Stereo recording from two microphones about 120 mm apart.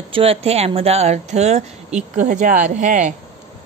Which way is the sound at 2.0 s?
90° right.